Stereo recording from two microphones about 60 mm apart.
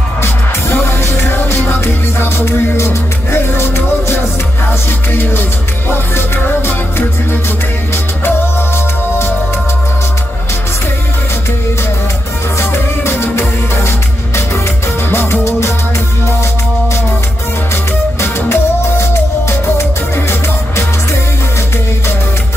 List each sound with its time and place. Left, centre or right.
0.2 s music: left
12.5 s music: left
18.2 s music: left